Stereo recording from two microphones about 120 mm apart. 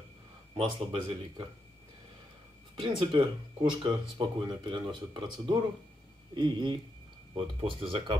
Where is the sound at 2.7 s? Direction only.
45° right (ahead or behind).